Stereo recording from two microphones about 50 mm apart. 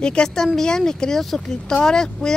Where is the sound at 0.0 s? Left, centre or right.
Centre.